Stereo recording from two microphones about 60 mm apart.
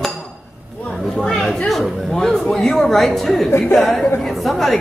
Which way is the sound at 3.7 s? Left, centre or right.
Centre.